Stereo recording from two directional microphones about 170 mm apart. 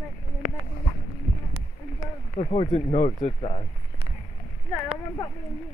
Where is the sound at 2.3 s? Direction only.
35° left (ahead or behind).